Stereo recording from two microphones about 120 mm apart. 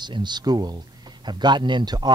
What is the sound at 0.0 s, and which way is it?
Speech, 40° right (ahead or behind).